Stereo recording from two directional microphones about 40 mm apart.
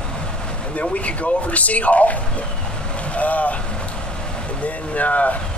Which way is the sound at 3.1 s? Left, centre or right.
Left.